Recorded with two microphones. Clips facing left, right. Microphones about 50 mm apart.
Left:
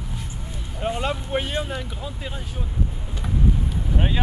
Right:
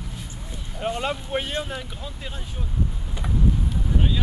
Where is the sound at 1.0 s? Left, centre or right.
Centre.